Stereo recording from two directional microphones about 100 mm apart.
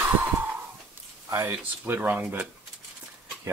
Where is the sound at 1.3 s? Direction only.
25° right (ahead or behind).